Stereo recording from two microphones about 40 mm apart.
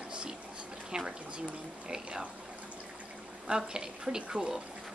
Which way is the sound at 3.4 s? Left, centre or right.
Centre.